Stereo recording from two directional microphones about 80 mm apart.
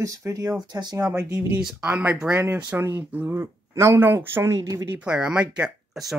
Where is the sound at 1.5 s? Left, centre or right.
Centre.